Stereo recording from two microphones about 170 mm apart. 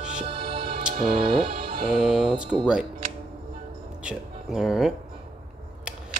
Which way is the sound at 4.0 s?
5° right (ahead or behind).